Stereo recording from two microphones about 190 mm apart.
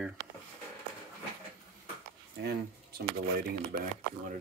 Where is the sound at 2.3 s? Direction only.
60° right (ahead or behind).